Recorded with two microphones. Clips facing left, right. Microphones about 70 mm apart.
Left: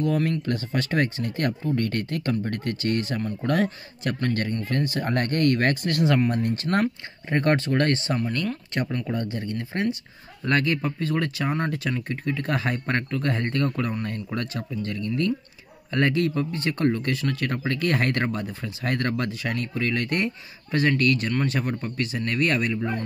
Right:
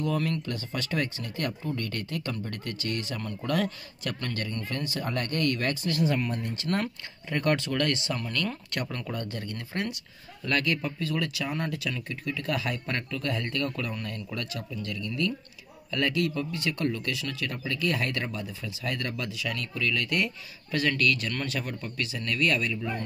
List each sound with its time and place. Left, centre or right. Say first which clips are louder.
0.0 s speech: left 5 dB; left
6.5 s speech: left 6 dB; left
8.2 s speech: left 5 dB; left